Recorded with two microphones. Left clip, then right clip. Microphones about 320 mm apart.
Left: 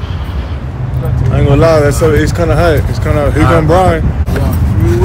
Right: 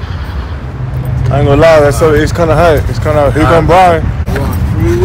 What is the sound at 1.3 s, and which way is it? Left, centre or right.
Speech, centre.